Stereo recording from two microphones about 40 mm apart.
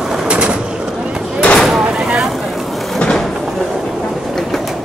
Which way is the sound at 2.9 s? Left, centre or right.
Centre.